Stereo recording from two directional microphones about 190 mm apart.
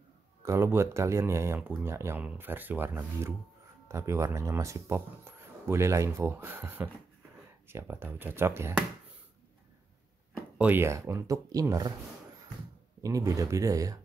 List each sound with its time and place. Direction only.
0.4 s speech: 15° right (ahead or behind)
10.6 s speech: 10° right (ahead or behind)
13.0 s speech: 15° right (ahead or behind)